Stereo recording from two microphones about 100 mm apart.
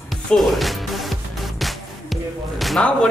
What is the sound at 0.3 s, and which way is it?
Speech, centre (ahead or behind).